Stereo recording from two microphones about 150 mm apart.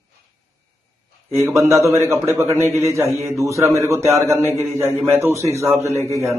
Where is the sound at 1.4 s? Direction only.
20° right (ahead or behind).